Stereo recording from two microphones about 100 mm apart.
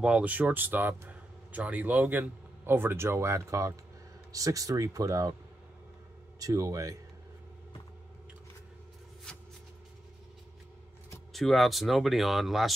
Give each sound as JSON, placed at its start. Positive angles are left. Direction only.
{"t": 0.0, "sound": "speech", "side_deg": -15}
{"t": 6.4, "sound": "speech", "side_deg": -35}
{"t": 11.3, "sound": "speech", "side_deg": 0}